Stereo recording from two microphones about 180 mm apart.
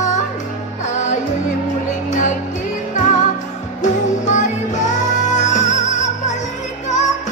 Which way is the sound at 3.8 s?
40° left (ahead or behind).